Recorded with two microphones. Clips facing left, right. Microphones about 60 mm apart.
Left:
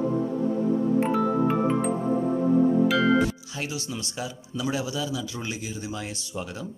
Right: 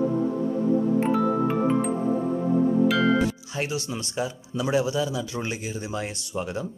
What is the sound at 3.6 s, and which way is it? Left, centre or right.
Speech, right.